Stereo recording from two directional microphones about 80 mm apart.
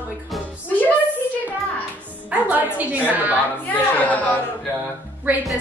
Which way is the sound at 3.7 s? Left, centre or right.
Left.